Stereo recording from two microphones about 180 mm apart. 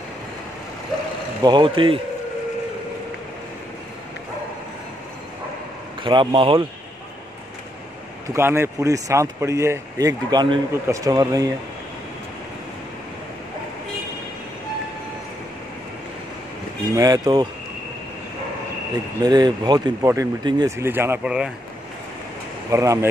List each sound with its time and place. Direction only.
1.4 s speech: 25° right (ahead or behind)
6.0 s speech: 30° right (ahead or behind)
8.3 s speech: 15° right (ahead or behind)
16.9 s speech: 20° right (ahead or behind)
19.2 s speech: 25° right (ahead or behind); by 21.5 s 5° right (ahead or behind)
22.7 s speech: 15° right (ahead or behind)